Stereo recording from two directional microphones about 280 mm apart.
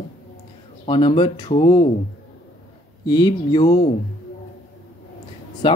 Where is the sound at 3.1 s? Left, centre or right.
Centre.